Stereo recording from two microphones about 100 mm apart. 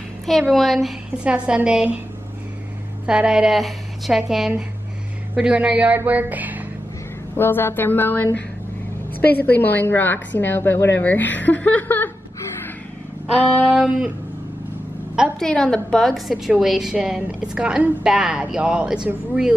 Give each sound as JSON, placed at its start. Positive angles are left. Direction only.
{"t": 0.3, "sound": "a woman's voice", "side_deg": 0}
{"t": 3.1, "sound": "a woman's voice", "side_deg": -10}
{"t": 7.3, "sound": "a woman's voice", "side_deg": 20}
{"t": 9.5, "sound": "a woman's voice", "side_deg": 20}
{"t": 13.7, "sound": "a woman's voice", "side_deg": -10}
{"t": 15.3, "sound": "a woman's voice", "side_deg": 10}